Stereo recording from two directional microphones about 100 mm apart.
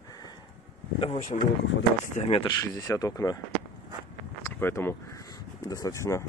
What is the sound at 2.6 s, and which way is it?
Speech, 30° left (ahead or behind).